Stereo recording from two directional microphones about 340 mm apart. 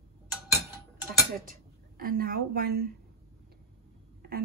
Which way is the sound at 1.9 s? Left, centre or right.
Right.